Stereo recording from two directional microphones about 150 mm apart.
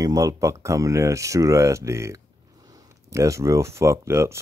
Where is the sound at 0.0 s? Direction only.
20° right (ahead or behind).